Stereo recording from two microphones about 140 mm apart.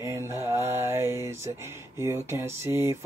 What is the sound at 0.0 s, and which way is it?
Mantra, 20° right (ahead or behind).